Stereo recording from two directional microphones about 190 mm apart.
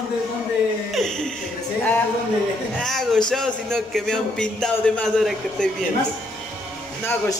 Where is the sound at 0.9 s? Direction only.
5° left (ahead or behind).